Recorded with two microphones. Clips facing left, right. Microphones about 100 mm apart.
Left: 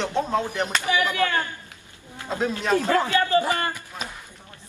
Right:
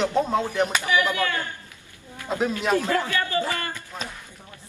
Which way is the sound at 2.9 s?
25° left (ahead or behind).